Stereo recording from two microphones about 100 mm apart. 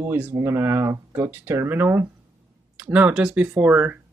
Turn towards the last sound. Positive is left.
turn(degrees=-20)  # may be behind; listen again after turning